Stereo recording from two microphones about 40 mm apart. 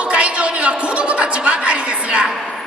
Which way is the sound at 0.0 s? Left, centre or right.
Right.